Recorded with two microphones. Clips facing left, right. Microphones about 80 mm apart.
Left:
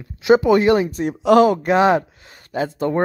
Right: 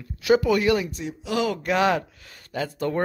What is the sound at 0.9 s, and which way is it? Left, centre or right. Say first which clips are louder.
Speech: left 10 dB; left.